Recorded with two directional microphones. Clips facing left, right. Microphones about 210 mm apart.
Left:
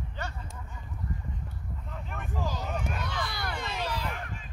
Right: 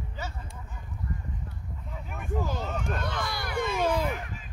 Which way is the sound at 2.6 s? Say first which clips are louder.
Right 2 dB; 10° left (ahead or behind).